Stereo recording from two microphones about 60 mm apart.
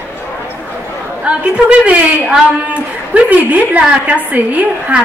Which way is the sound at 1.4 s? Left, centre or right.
Right.